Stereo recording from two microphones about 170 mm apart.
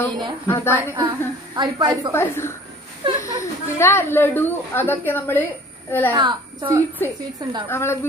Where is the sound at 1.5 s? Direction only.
25° right (ahead or behind).